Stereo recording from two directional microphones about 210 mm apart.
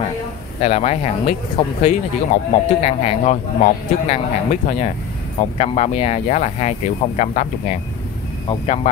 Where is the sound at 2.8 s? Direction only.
30° left (ahead or behind).